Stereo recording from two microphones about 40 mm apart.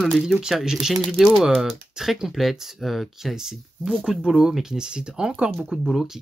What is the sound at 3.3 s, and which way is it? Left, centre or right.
Speech, centre.